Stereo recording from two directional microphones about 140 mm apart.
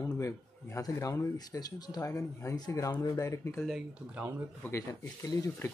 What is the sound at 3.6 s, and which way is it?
Speech, 5° right (ahead or behind).